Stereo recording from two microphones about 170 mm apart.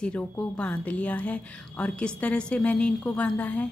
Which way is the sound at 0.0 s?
5° left (ahead or behind).